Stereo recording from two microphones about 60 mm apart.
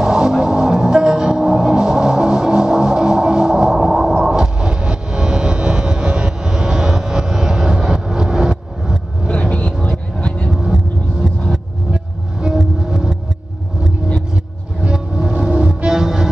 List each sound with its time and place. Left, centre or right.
0.0 s music: centre
9.3 s vehicle: left
9.7 s vehicle: centre
11.2 s a sound: centre
11.9 s music: centre
14.3 s vehicle: centre
15.4 s music: centre